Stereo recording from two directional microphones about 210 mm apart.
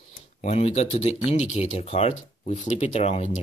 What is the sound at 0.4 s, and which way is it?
Speech, 30° left (ahead or behind).